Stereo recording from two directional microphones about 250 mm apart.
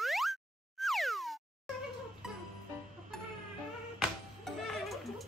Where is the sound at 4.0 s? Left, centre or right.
Centre.